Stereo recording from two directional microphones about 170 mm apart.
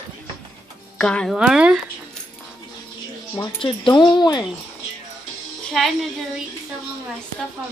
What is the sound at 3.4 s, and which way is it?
Speech, 30° left (ahead or behind).